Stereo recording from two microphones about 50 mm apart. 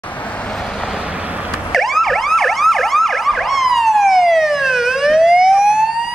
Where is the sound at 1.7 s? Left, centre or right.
Centre.